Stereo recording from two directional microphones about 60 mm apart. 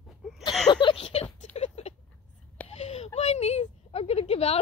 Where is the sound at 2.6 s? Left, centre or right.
Left.